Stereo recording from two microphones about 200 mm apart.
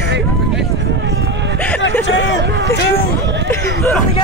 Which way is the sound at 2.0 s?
70° left (ahead or behind).